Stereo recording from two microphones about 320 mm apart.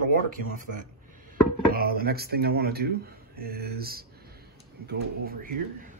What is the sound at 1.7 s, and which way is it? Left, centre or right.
Speech, right.